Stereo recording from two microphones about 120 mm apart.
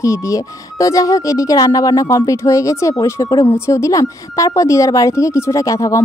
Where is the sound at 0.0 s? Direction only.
25° left (ahead or behind).